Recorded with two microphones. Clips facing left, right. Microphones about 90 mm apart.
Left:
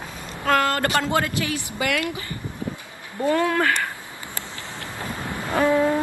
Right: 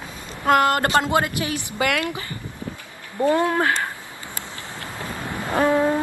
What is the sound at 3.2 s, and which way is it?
Speech, 25° right (ahead or behind).